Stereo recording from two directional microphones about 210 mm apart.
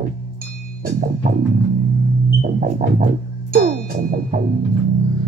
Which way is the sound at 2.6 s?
40° right (ahead or behind).